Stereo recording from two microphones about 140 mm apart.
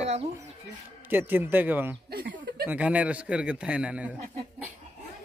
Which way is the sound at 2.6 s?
10° right (ahead or behind).